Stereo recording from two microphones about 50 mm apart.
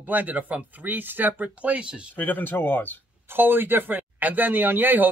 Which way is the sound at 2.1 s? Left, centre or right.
Left.